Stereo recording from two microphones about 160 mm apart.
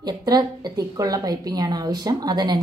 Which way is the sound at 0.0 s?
25° right (ahead or behind).